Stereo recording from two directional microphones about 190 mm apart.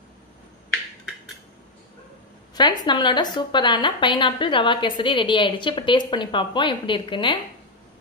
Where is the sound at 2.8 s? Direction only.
25° left (ahead or behind).